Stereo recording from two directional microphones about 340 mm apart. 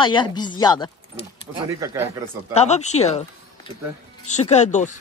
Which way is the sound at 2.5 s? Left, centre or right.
Centre.